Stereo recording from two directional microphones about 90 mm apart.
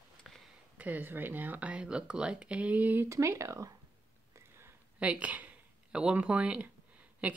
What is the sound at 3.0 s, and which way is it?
Speech, 35° right (ahead or behind).